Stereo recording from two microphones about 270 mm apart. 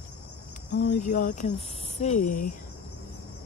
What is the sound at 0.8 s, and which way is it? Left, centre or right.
Speech, left.